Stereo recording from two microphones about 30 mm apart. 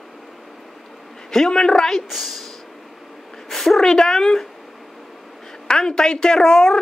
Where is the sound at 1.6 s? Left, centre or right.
Left.